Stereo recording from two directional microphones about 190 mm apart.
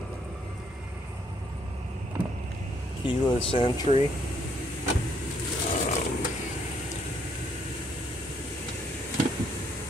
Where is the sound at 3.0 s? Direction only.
25° left (ahead or behind).